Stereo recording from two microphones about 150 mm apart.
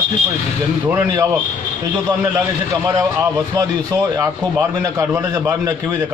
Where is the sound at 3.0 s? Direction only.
25° right (ahead or behind).